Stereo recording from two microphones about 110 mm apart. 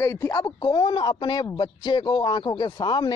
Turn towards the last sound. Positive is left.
turn(degrees=40)  # may be behind; listen again after turning